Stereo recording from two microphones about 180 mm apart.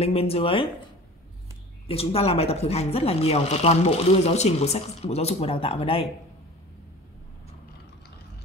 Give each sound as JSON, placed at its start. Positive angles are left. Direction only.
{"t": 0.0, "sound": "speech", "side_deg": 35}
{"t": 1.9, "sound": "speech", "side_deg": 35}